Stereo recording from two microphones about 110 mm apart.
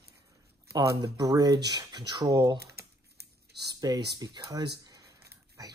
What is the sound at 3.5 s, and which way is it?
Speech, 40° right (ahead or behind).